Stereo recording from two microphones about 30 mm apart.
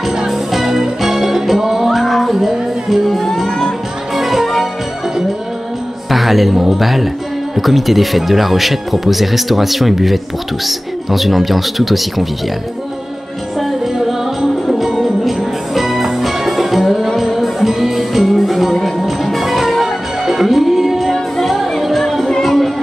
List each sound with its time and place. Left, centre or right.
0.3 s music: centre
3.4 s music: left
4.1 s music: centre
6.0 s speech: centre
15.0 s music: centre